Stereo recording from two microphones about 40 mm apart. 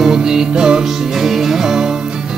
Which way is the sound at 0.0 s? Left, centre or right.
Centre.